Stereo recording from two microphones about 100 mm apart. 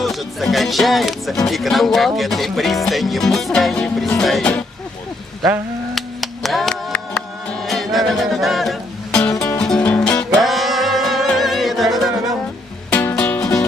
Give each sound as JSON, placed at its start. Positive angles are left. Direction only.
{"t": 0.0, "sound": "speech", "side_deg": 0}
{"t": 5.9, "sound": "music", "side_deg": 0}
{"t": 10.3, "sound": "music", "side_deg": 0}
{"t": 12.9, "sound": "music", "side_deg": 10}